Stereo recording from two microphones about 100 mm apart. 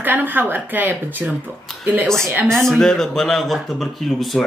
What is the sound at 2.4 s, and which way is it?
Speech, 5° left (ahead or behind).